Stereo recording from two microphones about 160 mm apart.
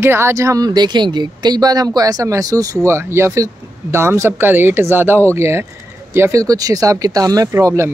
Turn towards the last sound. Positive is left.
turn(degrees=-20)  # may be behind; listen again after turning